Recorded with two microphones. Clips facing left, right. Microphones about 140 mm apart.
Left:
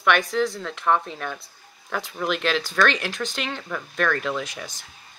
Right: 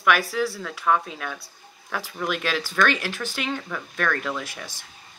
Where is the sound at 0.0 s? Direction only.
5° right (ahead or behind).